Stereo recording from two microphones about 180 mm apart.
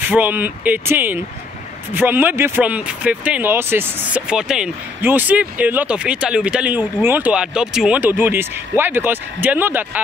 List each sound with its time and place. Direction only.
0.0 s speech: 10° right (ahead or behind)